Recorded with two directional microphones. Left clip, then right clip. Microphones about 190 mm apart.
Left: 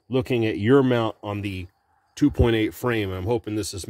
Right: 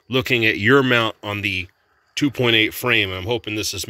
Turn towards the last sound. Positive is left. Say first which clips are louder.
# right 5 dB
turn(degrees=25)  # may be behind; listen again after turning